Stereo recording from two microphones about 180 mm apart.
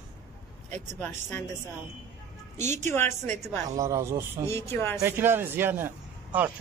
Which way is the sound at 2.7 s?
15° left (ahead or behind).